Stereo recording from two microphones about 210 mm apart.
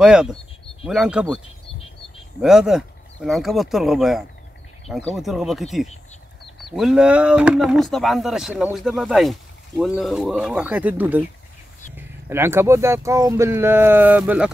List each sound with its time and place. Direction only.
0.0 s speech: 5° right (ahead or behind)
1.4 s chirp: 25° left (ahead or behind)
2.4 s speech: centre (ahead or behind)